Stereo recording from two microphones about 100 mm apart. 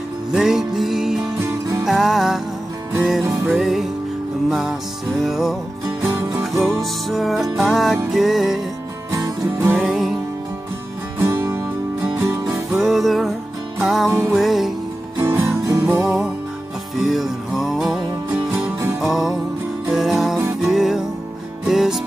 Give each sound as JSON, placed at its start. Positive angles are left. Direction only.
{"t": 0.3, "sound": "music", "side_deg": -5}
{"t": 5.9, "sound": "music", "side_deg": -25}
{"t": 6.6, "sound": "music", "side_deg": 0}
{"t": 9.1, "sound": "music", "side_deg": -35}
{"t": 9.8, "sound": "music", "side_deg": -5}
{"t": 11.1, "sound": "music", "side_deg": -25}
{"t": 12.4, "sound": "music", "side_deg": 0}
{"t": 15.5, "sound": "music", "side_deg": -30}
{"t": 16.0, "sound": "music", "side_deg": -5}